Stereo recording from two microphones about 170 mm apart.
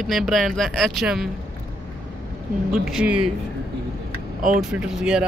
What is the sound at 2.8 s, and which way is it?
Speech, 5° right (ahead or behind).